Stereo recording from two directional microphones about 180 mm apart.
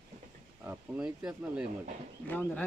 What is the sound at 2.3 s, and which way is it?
Speech, 10° left (ahead or behind).